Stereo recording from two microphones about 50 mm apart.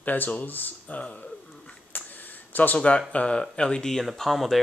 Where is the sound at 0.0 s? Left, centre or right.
Left.